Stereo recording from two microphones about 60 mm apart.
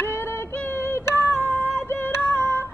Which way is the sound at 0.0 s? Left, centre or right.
Left.